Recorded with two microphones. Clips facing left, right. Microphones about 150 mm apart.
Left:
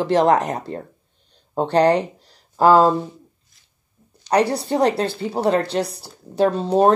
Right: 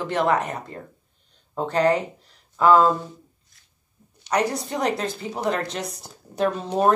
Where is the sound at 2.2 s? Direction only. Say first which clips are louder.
Left 3 dB; 30° left (ahead or behind).